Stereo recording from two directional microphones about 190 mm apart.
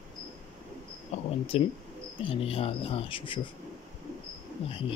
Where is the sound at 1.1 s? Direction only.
35° left (ahead or behind).